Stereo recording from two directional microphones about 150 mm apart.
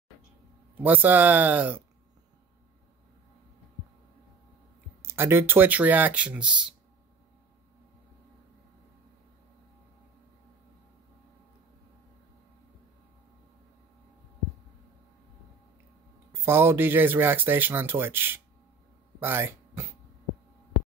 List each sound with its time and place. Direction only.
0.7 s speech: 10° right (ahead or behind)
5.0 s speech: 15° right (ahead or behind)
16.3 s speech: 15° right (ahead or behind)
19.1 s music: 15° right (ahead or behind)